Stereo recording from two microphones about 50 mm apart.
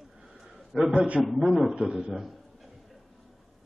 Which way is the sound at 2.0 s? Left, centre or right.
Centre.